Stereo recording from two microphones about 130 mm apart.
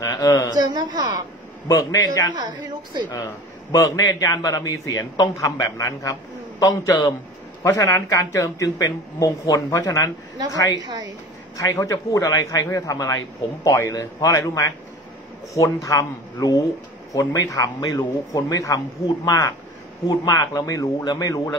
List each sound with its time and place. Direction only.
0.0 s speech: 25° left (ahead or behind)
0.6 s a woman's voice: 30° right (ahead or behind)
1.7 s speech: 30° left (ahead or behind)
2.3 s a woman's voice: 35° right (ahead or behind)
3.7 s speech: 30° left (ahead or behind)
10.8 s a woman's voice: 30° right (ahead or behind)
11.5 s speech: 25° left (ahead or behind)